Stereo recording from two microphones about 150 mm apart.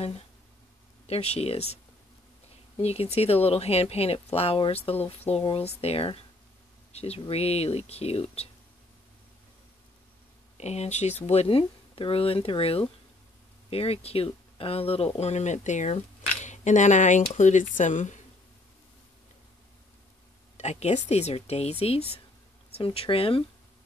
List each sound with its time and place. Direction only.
1.0 s speech: 45° left (ahead or behind)
2.8 s speech: 45° left (ahead or behind)
10.6 s speech: 45° left (ahead or behind)
20.5 s speech: 50° left (ahead or behind)